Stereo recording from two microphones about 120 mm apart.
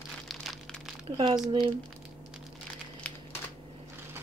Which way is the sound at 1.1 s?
40° right (ahead or behind).